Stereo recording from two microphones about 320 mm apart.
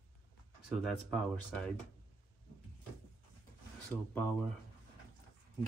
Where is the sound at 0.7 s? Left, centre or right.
Centre.